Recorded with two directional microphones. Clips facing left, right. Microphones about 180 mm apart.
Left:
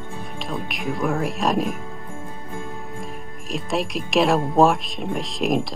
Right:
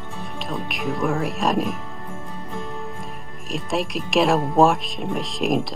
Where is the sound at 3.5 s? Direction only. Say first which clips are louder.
Even; centre (ahead or behind).